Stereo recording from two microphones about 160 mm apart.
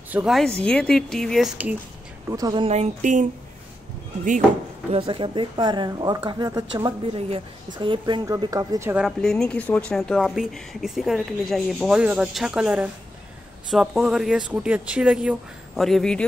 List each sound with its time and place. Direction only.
0.1 s speech: 5° right (ahead or behind)
2.2 s speech: 20° right (ahead or behind)
2.6 s speech: 45° right (ahead or behind)
4.9 s speech: 35° right (ahead or behind)
7.1 s speech: 35° right (ahead or behind); by 8.9 s 20° right (ahead or behind)
8.9 s speech: centre (ahead or behind)